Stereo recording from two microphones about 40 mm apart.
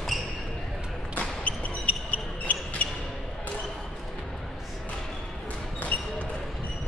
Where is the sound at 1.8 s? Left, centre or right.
Left.